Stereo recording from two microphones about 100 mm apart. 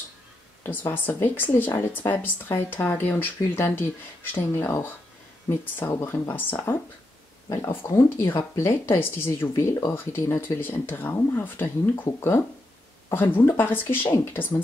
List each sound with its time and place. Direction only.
0.7 s speech: 20° left (ahead or behind)